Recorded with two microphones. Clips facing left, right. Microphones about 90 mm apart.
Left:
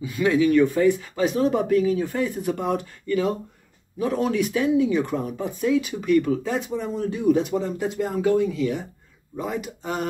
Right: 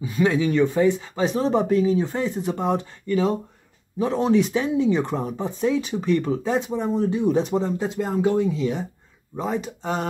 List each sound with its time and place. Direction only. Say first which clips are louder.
0.0 s speech: left 1 dB; 30° right (ahead or behind)